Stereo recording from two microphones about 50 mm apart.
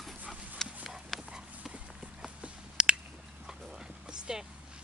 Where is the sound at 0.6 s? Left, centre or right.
Centre.